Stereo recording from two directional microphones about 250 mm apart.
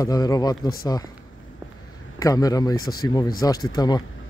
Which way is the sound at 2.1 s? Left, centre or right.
Centre.